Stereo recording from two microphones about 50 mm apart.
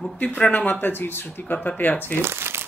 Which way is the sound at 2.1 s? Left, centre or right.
Right.